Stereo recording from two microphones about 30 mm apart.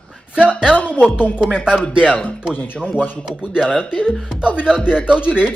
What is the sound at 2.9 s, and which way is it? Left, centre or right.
Speech, right.